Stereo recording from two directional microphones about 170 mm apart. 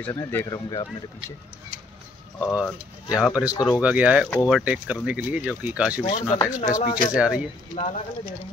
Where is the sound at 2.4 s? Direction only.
5° right (ahead or behind).